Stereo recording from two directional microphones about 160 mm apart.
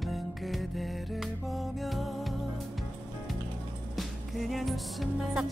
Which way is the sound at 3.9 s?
Centre (ahead or behind).